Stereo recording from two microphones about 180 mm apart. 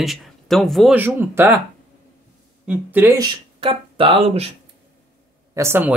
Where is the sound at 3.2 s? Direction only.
30° right (ahead or behind).